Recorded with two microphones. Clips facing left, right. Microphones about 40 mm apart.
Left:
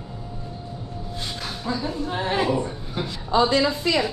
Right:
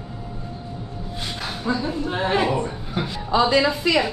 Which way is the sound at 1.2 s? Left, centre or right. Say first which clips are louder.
Right 3 dB; right.